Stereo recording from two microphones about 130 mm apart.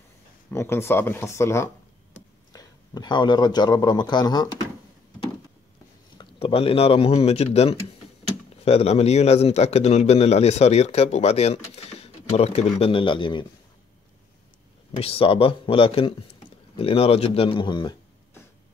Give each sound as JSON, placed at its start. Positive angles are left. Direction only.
{"t": 0.5, "sound": "a man's voice", "side_deg": 20}
{"t": 6.4, "sound": "a man's voice", "side_deg": 45}
{"t": 15.0, "sound": "a man's voice", "side_deg": 45}